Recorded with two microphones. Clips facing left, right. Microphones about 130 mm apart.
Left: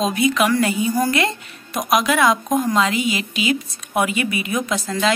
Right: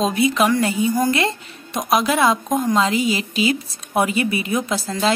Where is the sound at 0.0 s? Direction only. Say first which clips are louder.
Right 1 dB; 30° right (ahead or behind).